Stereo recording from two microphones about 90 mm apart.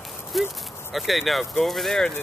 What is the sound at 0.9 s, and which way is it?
Speech, centre (ahead or behind).